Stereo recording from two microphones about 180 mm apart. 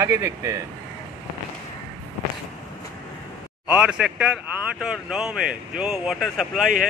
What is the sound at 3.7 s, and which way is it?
Speech, 5° right (ahead or behind).